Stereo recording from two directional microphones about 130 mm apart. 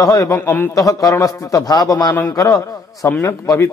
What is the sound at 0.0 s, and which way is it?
A man's voice, 25° left (ahead or behind).